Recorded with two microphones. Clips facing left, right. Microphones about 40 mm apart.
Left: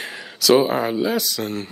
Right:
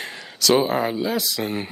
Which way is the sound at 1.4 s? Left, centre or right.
Right.